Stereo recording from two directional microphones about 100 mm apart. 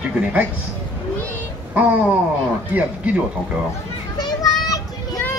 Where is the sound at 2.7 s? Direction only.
15° right (ahead or behind).